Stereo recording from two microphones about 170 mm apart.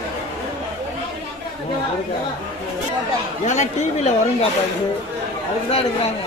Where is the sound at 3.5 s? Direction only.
45° left (ahead or behind).